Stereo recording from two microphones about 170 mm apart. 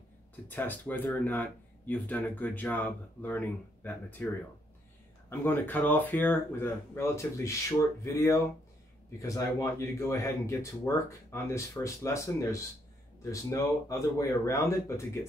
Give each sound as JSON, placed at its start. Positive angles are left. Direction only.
{"t": 0.5, "sound": "speech", "side_deg": 10}
{"t": 5.3, "sound": "speech", "side_deg": 10}